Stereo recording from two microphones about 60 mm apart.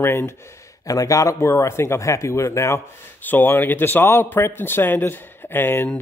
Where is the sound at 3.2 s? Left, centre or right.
Left.